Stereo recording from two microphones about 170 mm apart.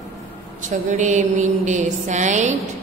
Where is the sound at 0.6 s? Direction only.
45° right (ahead or behind).